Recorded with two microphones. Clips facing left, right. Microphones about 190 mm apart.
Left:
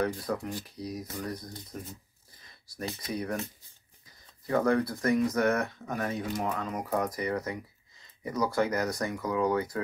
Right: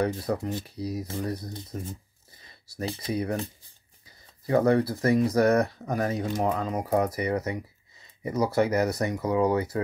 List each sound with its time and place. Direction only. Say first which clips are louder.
0.0 s speech: right 3 dB; 25° right (ahead or behind)
4.5 s speech: right 4 dB; 30° right (ahead or behind)